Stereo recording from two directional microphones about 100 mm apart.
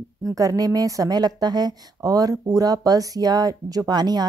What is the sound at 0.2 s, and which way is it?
Speech, 35° right (ahead or behind).